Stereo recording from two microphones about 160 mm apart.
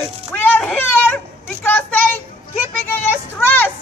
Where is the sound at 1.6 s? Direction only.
10° left (ahead or behind).